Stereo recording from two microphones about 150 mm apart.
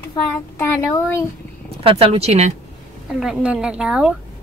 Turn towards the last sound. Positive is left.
turn(degrees=-5)  # may be behind; listen again after turning